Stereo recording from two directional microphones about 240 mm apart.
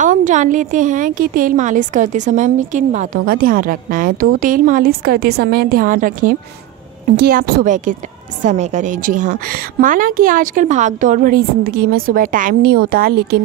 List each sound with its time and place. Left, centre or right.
0.0 s a woman's voice: right